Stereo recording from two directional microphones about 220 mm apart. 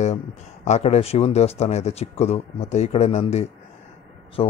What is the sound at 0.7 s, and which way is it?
Speech, 30° left (ahead or behind).